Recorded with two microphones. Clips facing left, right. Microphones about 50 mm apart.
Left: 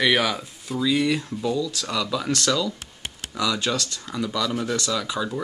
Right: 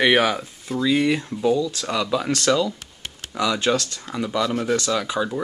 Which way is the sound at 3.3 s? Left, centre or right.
Right.